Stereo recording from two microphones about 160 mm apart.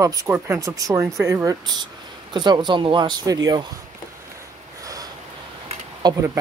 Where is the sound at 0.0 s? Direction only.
20° right (ahead or behind).